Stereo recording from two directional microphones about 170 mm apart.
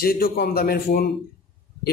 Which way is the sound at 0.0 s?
60° left (ahead or behind).